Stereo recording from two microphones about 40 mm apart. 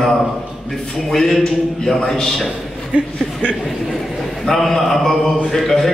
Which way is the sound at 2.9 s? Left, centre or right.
Right.